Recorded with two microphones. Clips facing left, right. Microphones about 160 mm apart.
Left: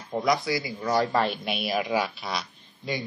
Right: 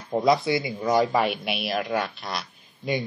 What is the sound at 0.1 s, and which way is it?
Speech, 25° right (ahead or behind).